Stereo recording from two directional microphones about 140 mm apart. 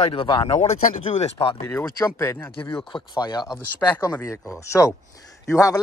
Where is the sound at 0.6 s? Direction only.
55° left (ahead or behind).